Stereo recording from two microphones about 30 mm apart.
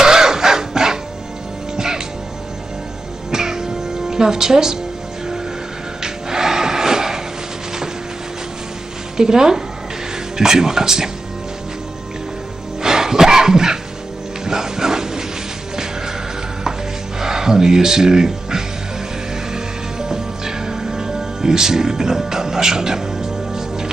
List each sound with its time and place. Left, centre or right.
0.0 s a sound: centre
1.8 s music: centre
3.3 s music: centre
6.0 s music: centre
9.1 s speech: right
12.8 s music: centre
17.2 s speech: centre
19.5 s music: centre